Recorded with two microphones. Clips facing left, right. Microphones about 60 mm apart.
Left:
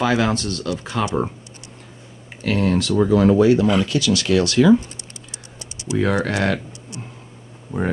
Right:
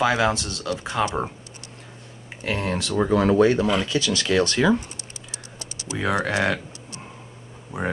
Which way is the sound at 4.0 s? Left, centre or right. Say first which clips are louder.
Left 3 dB; right.